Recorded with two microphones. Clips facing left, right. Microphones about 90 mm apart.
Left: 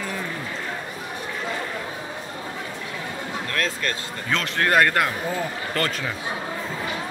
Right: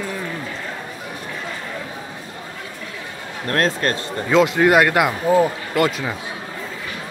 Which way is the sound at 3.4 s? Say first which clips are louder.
Right 9 dB; 40° right (ahead or behind).